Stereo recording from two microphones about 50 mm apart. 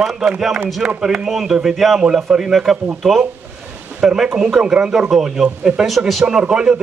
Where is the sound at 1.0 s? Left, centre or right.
Centre.